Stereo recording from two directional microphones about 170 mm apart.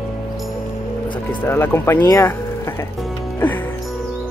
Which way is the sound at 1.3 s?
10° left (ahead or behind).